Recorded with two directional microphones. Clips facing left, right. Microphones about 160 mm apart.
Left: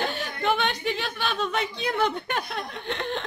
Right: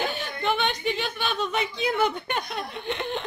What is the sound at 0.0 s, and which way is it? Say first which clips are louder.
Speech: even; centre (ahead or behind).